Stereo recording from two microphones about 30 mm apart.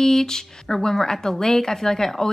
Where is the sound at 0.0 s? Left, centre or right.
Centre.